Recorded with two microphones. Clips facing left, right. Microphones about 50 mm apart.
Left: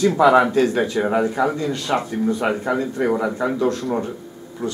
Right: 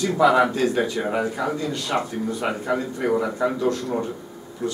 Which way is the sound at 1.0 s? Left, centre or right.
Left.